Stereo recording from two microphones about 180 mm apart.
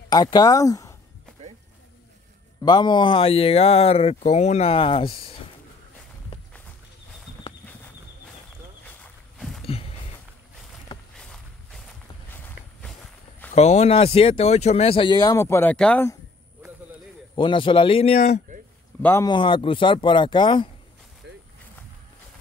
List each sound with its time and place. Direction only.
0.1 s speech: 20° left (ahead or behind)
2.6 s speech: 25° left (ahead or behind)
8.8 s a sound: 5° left (ahead or behind)
9.7 s a sound: 30° left (ahead or behind)
11.1 s walk: 5° left (ahead or behind)
13.5 s speech: 40° left (ahead or behind); by 16.2 s 10° left (ahead or behind)
17.4 s speech: 30° left (ahead or behind)
19.0 s speech: 15° left (ahead or behind)
19.3 s speech: 30° left (ahead or behind)
21.2 s a sound: 75° right (ahead or behind)